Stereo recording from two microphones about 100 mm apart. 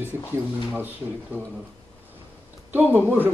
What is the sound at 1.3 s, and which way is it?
Speech, 15° right (ahead or behind).